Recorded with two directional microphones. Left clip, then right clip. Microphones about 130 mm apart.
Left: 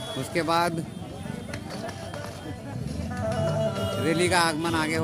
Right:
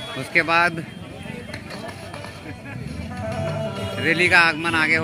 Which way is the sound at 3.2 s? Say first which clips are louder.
Even; 30° left (ahead or behind).